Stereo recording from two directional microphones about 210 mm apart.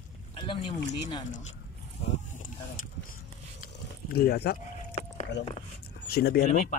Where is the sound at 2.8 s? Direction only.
40° left (ahead or behind).